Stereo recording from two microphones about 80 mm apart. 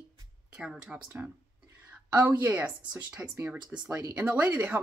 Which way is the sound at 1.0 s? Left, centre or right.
Right.